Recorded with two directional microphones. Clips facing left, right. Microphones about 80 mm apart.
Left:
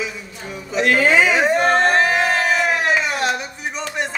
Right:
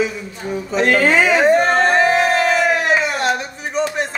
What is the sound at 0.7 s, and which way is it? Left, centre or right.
Speech, right.